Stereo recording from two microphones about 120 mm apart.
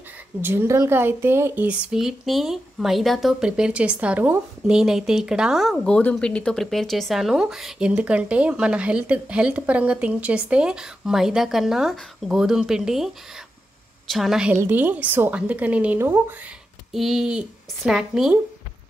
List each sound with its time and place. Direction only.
0.4 s speech: 20° right (ahead or behind); by 14.5 s centre (ahead or behind)
14.5 s a woman's voice: 15° right (ahead or behind)
16.9 s speech: centre (ahead or behind)